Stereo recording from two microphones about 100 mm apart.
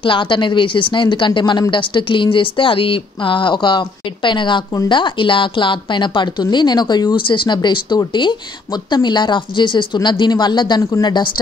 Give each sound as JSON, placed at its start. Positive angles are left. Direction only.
{"t": 0.0, "sound": "a woman's voice", "side_deg": 55}
{"t": 10.8, "sound": "speech", "side_deg": 30}